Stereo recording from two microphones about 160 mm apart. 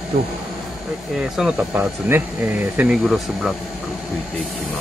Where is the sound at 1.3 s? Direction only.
5° right (ahead or behind).